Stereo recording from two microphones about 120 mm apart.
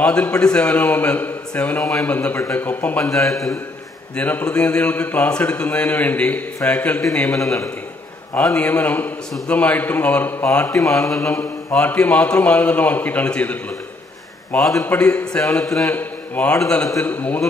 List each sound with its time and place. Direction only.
0.0 s a man's voice: 10° left (ahead or behind)
3.3 s a man's voice: centre (ahead or behind)
4.2 s a man's voice: 15° left (ahead or behind)
7.3 s a man's voice: 25° left (ahead or behind)
8.4 s a man's voice: 10° left (ahead or behind)